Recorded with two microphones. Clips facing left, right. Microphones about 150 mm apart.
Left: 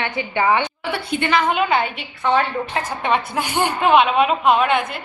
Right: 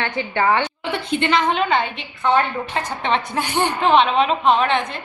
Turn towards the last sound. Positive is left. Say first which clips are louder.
# left 1 dB
turn(degrees=10)  # may be behind; listen again after turning